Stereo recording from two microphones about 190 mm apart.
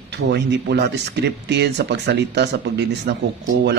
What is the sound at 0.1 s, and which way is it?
Speech, 60° right (ahead or behind).